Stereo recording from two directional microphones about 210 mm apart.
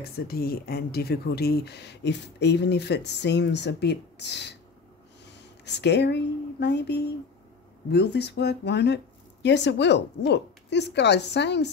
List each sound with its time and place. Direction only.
0.3 s a woman's voice: 45° left (ahead or behind)